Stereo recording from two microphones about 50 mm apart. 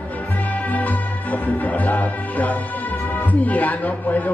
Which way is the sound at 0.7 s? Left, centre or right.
Left.